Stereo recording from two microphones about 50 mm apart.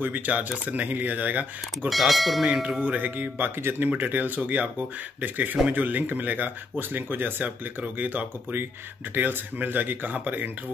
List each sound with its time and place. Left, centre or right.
0.0 s speech: right
1.9 s speech: centre
2.4 s tubular bells: centre
2.8 s speech: right
7.4 s speech: right